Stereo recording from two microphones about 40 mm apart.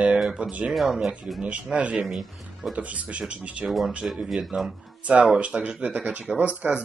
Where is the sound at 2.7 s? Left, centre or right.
Right.